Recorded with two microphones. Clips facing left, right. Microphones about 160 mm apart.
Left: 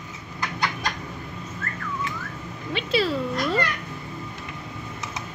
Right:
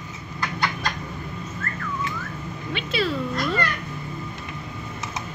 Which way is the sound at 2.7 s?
30° left (ahead or behind).